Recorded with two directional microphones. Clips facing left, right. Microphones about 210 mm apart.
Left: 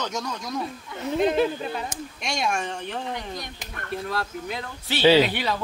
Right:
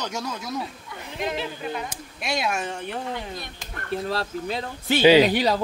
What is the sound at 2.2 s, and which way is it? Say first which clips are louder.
Speech: right 1 dB; 5° right (ahead or behind).